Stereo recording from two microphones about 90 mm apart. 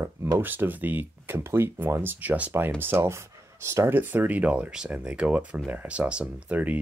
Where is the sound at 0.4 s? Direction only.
20° right (ahead or behind).